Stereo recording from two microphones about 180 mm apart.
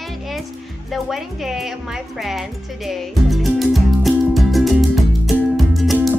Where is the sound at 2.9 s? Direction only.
Centre (ahead or behind).